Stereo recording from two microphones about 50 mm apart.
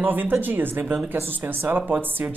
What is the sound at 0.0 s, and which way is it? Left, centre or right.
Speech, right.